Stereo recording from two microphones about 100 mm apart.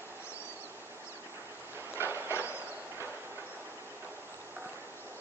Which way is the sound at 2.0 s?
25° right (ahead or behind).